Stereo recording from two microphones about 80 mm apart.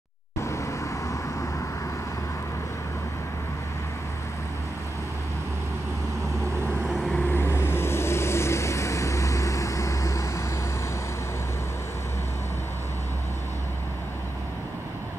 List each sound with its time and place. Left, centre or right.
0.4 s vehicle: left
7.2 s vehicle: left